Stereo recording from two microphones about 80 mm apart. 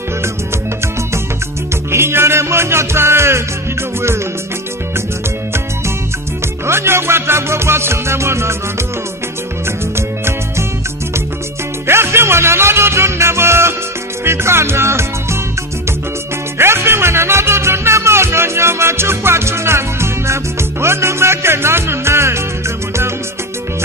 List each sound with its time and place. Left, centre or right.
1.9 s music: right
6.6 s music: right
9.7 s music: right
11.9 s music: right
16.5 s music: right